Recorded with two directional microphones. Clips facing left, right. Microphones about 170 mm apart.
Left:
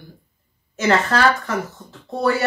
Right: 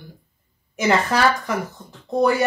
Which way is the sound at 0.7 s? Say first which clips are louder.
Left 1 dB; 15° right (ahead or behind).